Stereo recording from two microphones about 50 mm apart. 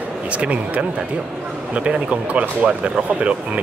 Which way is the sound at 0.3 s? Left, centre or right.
Right.